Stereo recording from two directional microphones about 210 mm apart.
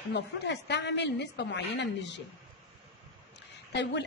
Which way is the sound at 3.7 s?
55° left (ahead or behind).